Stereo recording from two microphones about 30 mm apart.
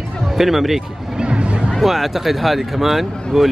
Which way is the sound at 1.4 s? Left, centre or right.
Right.